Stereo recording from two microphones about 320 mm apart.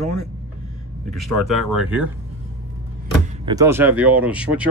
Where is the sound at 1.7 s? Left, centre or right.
Centre.